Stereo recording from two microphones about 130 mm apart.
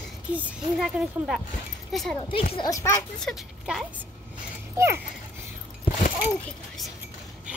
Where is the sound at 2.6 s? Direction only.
25° left (ahead or behind).